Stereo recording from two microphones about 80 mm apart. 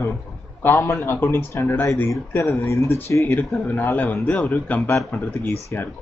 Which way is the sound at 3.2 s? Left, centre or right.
Left.